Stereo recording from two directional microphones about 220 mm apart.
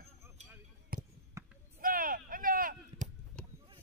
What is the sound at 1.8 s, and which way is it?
Artillery fire, 40° right (ahead or behind).